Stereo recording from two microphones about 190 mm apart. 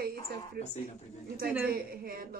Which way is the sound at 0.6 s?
50° right (ahead or behind).